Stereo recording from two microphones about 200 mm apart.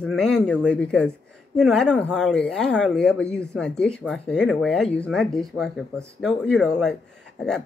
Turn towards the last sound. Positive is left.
turn(degrees=5)  # may be behind; listen again after turning